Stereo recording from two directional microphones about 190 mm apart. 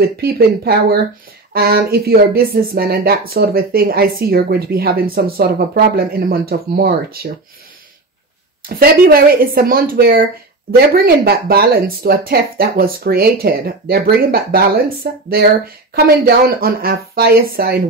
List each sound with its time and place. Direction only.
0.0 s speech: 55° right (ahead or behind)
8.6 s speech: 50° right (ahead or behind)